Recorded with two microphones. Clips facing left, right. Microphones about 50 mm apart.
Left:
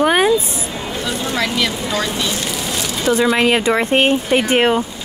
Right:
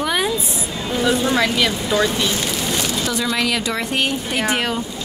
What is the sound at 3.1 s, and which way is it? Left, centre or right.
Speech, left.